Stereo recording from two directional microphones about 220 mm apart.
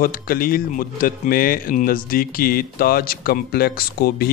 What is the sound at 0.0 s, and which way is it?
Speech, 40° left (ahead or behind).